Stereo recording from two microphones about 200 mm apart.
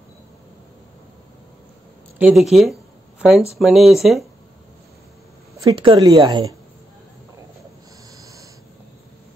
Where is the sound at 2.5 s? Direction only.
Centre (ahead or behind).